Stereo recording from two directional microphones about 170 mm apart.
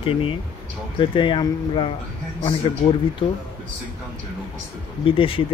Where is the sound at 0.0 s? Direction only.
30° left (ahead or behind).